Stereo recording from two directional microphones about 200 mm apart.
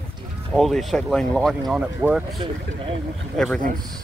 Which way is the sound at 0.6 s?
Centre (ahead or behind).